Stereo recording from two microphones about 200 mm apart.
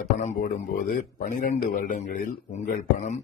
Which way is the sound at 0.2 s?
35° left (ahead or behind).